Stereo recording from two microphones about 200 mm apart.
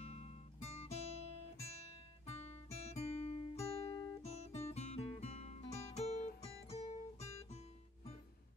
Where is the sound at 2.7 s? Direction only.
30° left (ahead or behind).